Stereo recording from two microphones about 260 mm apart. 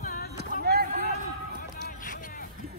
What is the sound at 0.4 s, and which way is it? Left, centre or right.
Vehicle, right.